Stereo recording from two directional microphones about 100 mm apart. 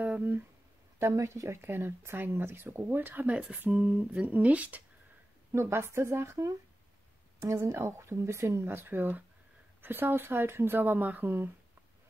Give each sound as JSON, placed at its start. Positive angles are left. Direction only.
{"t": 0.0, "sound": "a sound", "side_deg": -20}
{"t": 0.9, "sound": "speech", "side_deg": -30}
{"t": 5.5, "sound": "speech", "side_deg": -25}